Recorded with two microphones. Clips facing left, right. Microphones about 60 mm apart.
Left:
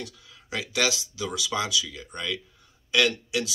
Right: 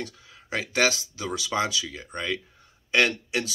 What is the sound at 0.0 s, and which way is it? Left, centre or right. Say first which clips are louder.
Speech: right 3 dB; right.